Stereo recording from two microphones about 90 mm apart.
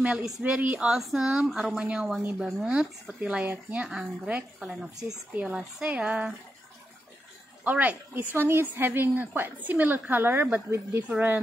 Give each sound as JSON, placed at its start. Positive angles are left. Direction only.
{"t": 0.0, "sound": "speech", "side_deg": -10}
{"t": 7.6, "sound": "a woman's voice", "side_deg": -15}